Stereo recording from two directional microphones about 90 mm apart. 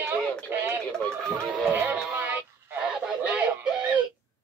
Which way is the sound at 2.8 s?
10° right (ahead or behind).